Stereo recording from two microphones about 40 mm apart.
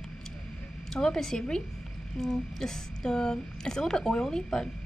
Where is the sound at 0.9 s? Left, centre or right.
Centre.